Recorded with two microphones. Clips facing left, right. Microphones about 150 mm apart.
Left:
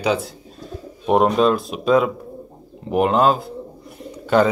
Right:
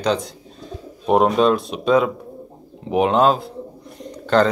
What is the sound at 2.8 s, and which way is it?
Bird, centre (ahead or behind).